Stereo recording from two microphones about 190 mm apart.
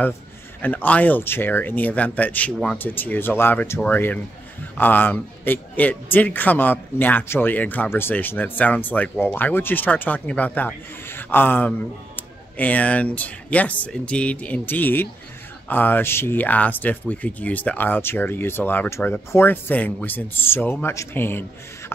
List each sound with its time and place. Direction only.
0.6 s speech: 10° left (ahead or behind)